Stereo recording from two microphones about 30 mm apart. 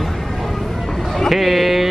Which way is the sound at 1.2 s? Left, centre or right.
Centre.